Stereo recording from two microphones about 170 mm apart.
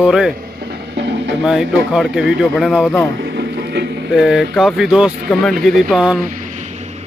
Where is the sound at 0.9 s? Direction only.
90° right.